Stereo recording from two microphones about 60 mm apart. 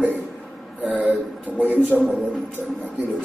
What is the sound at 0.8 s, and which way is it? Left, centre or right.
Speech, right.